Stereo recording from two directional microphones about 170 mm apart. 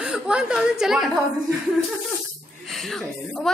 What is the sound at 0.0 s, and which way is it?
Speech, 5° right (ahead or behind).